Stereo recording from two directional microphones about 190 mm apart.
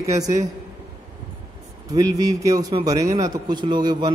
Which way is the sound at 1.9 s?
20° right (ahead or behind).